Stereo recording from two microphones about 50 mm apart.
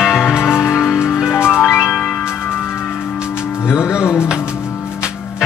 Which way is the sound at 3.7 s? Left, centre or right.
Centre.